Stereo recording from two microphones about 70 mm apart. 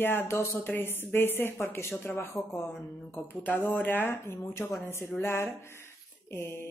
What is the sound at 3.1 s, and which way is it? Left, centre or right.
Speech, left.